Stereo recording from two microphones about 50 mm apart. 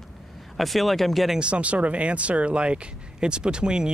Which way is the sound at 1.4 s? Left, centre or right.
Right.